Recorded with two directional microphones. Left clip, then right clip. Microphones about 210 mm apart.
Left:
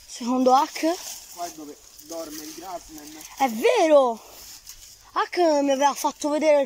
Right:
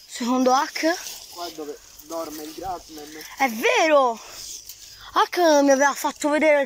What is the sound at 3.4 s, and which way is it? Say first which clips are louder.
Speech: even; 20° left (ahead or behind).